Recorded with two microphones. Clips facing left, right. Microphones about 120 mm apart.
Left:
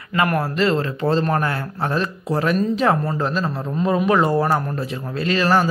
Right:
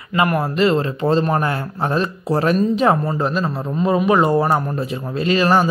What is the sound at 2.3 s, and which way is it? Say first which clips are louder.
Speech: right 3 dB; 35° right (ahead or behind).